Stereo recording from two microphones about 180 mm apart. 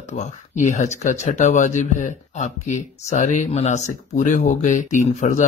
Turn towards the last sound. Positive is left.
turn(degrees=40)  # may be behind; listen again after turning